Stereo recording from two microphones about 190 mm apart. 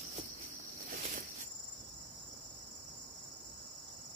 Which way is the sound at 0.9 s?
45° right (ahead or behind).